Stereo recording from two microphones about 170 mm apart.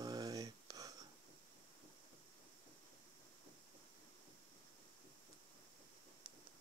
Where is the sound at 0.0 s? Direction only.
25° right (ahead or behind).